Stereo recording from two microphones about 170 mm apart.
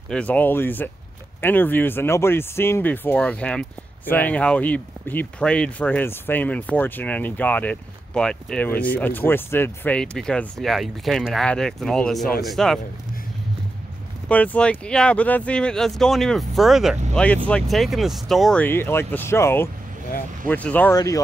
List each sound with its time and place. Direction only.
0.1 s speech: 10° left (ahead or behind)
14.3 s speech: 10° left (ahead or behind)
20.9 s speech: 20° left (ahead or behind)